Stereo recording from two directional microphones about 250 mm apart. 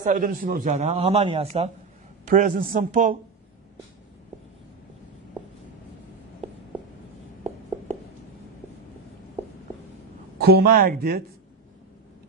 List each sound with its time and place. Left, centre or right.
0.0 s a man's voice: right
10.4 s speech: right